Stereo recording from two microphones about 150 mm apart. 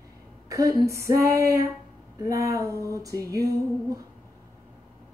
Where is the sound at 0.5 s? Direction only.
20° right (ahead or behind).